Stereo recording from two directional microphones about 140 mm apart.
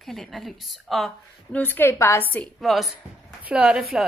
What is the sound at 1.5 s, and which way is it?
Speech, 15° left (ahead or behind).